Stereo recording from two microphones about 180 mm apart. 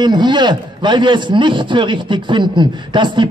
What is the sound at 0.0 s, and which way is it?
A man's voice, 25° right (ahead or behind).